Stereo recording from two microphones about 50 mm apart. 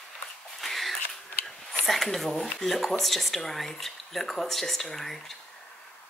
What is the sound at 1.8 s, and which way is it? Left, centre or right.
Speech, centre.